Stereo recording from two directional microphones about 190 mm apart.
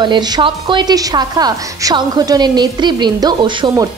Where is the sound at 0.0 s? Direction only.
25° right (ahead or behind).